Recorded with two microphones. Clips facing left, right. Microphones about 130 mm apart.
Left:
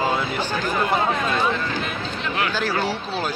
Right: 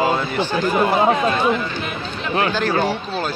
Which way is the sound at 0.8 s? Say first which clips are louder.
Right 5 dB; 25° right (ahead or behind).